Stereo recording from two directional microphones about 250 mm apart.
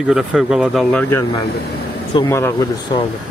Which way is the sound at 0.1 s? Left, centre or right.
Centre.